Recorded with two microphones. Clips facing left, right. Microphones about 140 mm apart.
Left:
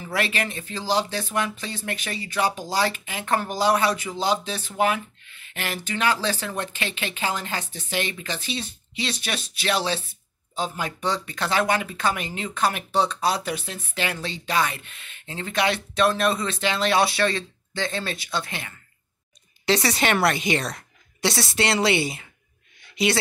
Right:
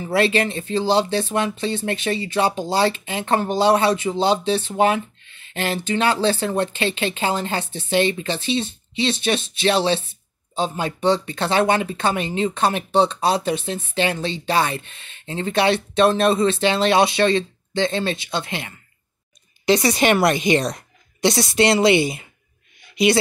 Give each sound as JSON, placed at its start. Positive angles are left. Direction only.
{"t": 0.0, "sound": "a woman's voice", "side_deg": -30}